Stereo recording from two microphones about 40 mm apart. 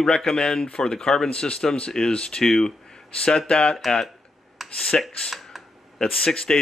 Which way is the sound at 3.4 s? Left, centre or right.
Left.